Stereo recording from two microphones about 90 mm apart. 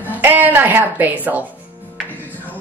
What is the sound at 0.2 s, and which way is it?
Music, 20° right (ahead or behind).